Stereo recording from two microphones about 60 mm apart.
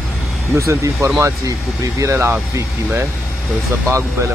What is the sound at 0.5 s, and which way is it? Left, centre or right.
Speech, right.